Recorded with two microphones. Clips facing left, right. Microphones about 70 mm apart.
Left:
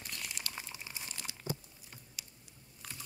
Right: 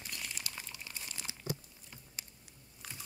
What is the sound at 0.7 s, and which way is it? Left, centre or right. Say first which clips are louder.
Crumpling: left 1 dB; centre.